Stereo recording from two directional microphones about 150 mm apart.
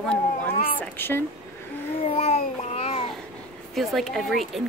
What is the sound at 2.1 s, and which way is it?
Babbling, 45° left (ahead or behind).